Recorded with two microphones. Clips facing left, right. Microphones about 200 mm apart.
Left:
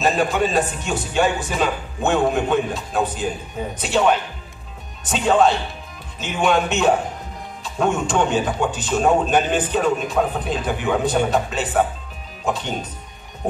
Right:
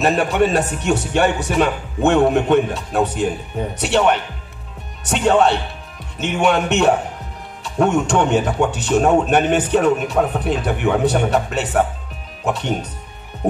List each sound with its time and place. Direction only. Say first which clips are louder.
0.0 s a man's voice: right 3 dB; 65° right (ahead or behind)